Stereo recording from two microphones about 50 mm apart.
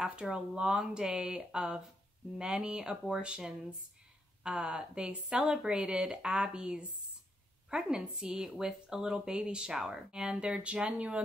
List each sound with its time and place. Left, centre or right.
0.1 s speech: right
0.6 s speech: centre
10.3 s speech: right